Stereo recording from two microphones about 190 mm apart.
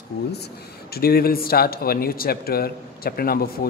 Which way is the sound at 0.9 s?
55° left (ahead or behind).